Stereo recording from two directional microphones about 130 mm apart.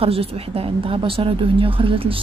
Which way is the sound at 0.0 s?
50° right (ahead or behind).